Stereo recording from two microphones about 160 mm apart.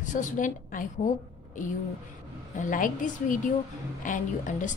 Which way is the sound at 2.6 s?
55° left (ahead or behind).